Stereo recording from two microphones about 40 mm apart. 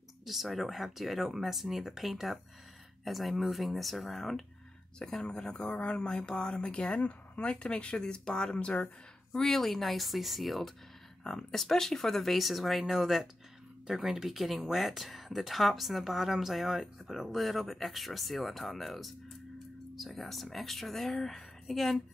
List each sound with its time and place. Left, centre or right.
0.2 s speech: centre
4.9 s speech: centre
6.9 s speech: left
7.4 s speech: left
9.3 s speech: centre